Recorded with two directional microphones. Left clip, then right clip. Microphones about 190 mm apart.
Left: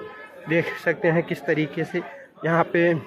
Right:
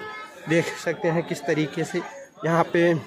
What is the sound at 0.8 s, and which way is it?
Speech, 10° right (ahead or behind).